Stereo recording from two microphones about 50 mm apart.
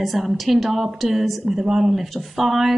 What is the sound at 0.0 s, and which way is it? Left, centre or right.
A woman's voice, centre.